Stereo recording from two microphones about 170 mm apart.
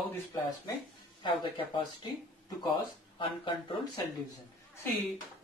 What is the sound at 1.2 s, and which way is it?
Speech, 25° left (ahead or behind).